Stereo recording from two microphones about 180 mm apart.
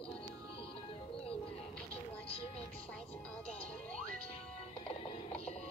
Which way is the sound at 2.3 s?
35° left (ahead or behind).